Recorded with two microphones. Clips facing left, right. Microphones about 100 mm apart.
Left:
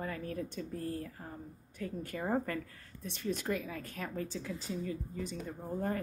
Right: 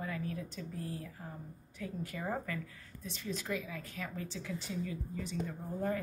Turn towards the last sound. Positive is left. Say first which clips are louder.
# even
turn(degrees=45)  # may be behind; listen again after turning